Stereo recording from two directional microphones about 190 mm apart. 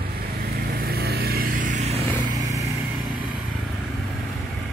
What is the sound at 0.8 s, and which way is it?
Vehicle, 55° right (ahead or behind).